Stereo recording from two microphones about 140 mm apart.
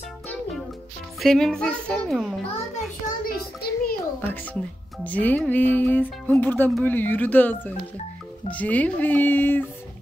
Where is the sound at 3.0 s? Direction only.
90° left.